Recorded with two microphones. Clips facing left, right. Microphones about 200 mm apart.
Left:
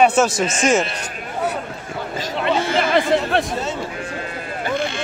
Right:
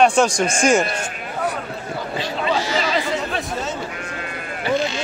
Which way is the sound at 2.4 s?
55° left (ahead or behind).